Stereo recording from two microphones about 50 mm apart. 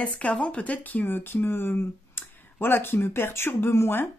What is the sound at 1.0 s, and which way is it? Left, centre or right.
Speech, left.